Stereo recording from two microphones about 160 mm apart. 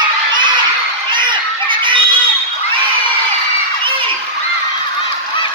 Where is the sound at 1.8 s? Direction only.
30° right (ahead or behind).